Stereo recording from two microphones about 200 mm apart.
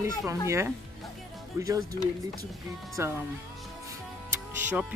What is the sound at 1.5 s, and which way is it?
Speech, 15° right (ahead or behind).